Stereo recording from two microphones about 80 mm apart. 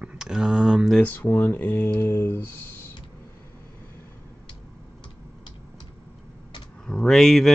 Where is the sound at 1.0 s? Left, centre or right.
Left.